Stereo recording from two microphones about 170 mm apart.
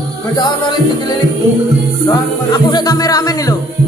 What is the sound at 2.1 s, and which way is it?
Music, 25° left (ahead or behind).